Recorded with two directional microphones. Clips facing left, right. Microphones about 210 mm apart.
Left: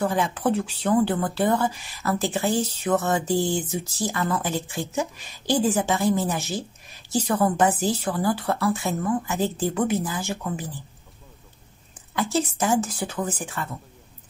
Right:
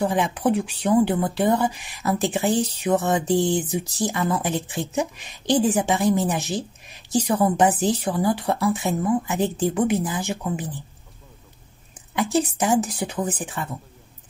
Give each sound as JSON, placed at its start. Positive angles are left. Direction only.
{"t": 0.0, "sound": "speech", "side_deg": -15}
{"t": 12.2, "sound": "speech", "side_deg": -15}